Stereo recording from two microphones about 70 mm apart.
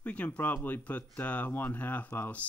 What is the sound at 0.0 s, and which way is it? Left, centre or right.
Speech, centre.